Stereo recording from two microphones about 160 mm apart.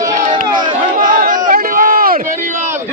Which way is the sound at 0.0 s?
50° right (ahead or behind).